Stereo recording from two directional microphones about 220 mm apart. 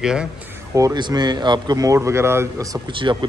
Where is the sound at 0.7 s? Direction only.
15° right (ahead or behind).